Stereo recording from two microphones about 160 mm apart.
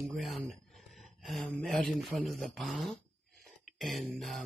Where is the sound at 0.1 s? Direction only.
Centre (ahead or behind).